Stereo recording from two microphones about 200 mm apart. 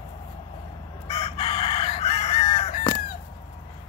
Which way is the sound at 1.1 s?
30° left (ahead or behind).